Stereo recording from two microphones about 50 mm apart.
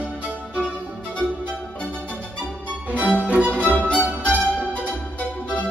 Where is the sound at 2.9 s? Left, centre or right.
Right.